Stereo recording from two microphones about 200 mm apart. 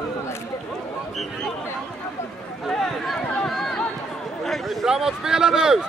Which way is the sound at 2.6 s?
Centre (ahead or behind).